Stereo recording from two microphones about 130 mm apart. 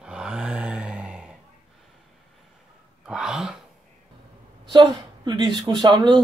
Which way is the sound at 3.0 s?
5° right (ahead or behind).